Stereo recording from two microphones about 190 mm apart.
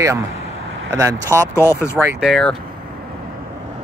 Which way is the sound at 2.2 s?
Centre (ahead or behind).